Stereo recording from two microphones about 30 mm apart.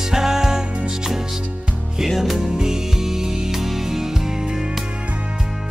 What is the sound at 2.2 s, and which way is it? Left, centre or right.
Music, centre.